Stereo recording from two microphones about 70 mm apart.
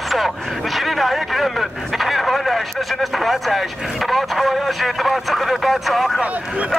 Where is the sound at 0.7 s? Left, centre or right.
Centre.